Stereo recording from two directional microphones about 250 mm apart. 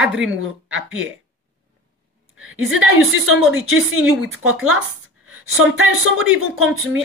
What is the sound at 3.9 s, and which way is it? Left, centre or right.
A woman's voice, right.